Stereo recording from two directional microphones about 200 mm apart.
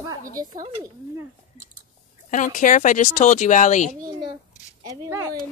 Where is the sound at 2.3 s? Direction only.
40° left (ahead or behind).